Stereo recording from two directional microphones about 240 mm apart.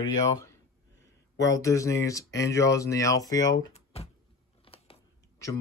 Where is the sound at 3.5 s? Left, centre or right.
Left.